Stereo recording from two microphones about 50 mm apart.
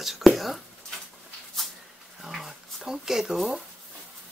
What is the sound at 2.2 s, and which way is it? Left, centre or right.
Speech, centre.